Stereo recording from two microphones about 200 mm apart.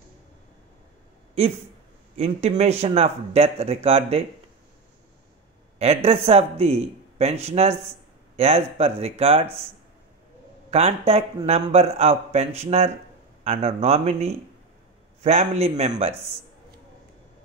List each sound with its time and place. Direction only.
2.1 s speech: 35° right (ahead or behind)
5.8 s speech: 30° right (ahead or behind)
10.7 s speech: 30° right (ahead or behind)